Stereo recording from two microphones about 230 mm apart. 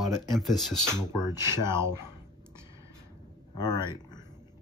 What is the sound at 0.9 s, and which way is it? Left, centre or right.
Speech, centre.